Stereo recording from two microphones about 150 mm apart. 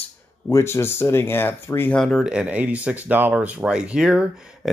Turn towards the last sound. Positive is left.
turn(degrees=-5)  # may be behind; listen again after turning